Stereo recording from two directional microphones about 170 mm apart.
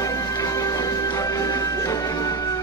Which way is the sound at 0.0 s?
20° left (ahead or behind).